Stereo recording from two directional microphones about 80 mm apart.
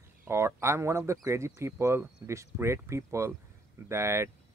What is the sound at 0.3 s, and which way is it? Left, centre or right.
Speech, right.